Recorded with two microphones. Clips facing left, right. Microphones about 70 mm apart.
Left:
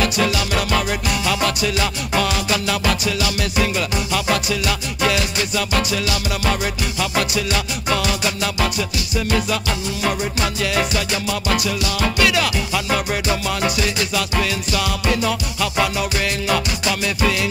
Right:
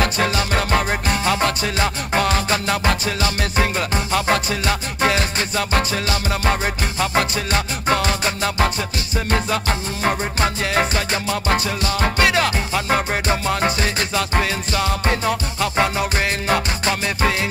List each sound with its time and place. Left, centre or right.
0.0 s music: right